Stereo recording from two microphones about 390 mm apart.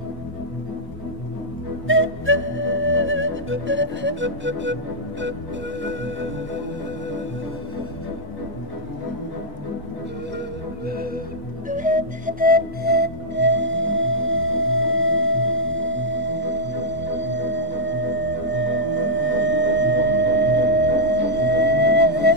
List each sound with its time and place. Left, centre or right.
1.9 s music: right
11.7 s music: centre